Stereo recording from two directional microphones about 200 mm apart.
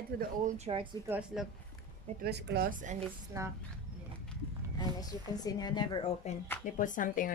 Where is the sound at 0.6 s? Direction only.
25° right (ahead or behind).